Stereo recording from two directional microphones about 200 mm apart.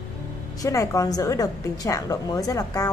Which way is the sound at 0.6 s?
15° left (ahead or behind).